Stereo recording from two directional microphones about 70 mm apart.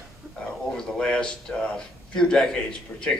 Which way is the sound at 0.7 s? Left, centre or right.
Centre.